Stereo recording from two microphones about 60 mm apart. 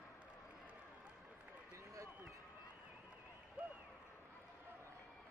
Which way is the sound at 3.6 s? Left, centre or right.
Right.